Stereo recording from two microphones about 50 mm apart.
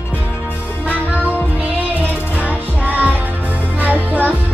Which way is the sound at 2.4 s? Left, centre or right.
Right.